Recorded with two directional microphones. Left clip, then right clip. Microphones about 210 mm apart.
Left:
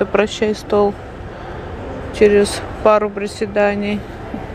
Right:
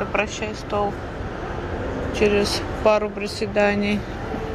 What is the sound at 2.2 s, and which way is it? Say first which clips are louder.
Speech: left 8 dB; 20° left (ahead or behind).